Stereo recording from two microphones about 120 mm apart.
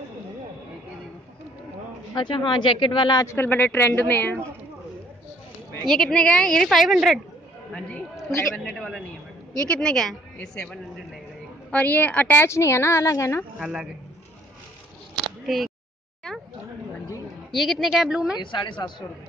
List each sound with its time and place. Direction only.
2.1 s a woman's voice: 45° left (ahead or behind)
3.2 s a woman's voice: 20° left (ahead or behind)
5.9 s a woman's voice: 5° left (ahead or behind)
8.6 s a woman's voice: 5° left (ahead or behind); by 13.5 s 20° left (ahead or behind)
13.6 s a man's voice: 5° right (ahead or behind)
15.4 s speech: centre (ahead or behind)
16.3 s a sound: 5° left (ahead or behind)
17.5 s a woman's voice: centre (ahead or behind)
18.4 s speech: 40° left (ahead or behind)